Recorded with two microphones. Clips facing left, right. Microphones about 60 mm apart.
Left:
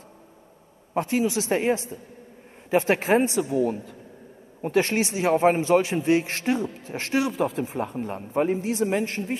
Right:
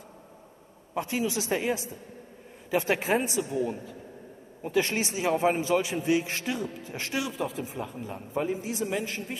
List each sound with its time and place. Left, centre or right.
0.9 s a man's voice: left
3.1 s a man's voice: left
4.8 s a man's voice: left
7.2 s a man's voice: left